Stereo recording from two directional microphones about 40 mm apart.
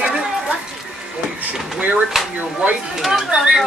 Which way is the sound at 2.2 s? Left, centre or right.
Centre.